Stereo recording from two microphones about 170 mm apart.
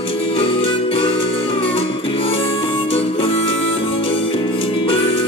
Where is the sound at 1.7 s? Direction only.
35° left (ahead or behind).